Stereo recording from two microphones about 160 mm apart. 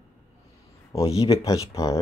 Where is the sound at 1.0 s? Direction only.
40° left (ahead or behind).